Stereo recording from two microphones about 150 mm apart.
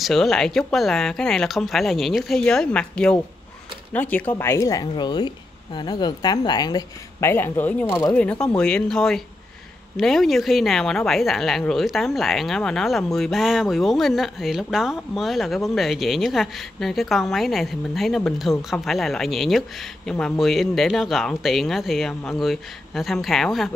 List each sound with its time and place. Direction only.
0.0 s a woman's voice: centre (ahead or behind)